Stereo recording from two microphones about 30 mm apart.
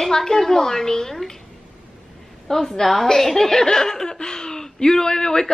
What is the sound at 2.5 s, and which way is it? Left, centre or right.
A woman's voice, centre.